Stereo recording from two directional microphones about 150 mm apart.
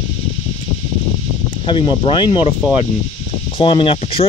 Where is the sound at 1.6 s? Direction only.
35° left (ahead or behind).